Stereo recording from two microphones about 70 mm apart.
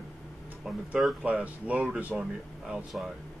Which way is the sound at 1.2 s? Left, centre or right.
Centre.